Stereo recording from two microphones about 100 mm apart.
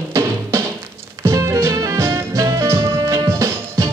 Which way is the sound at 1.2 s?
30° right (ahead or behind).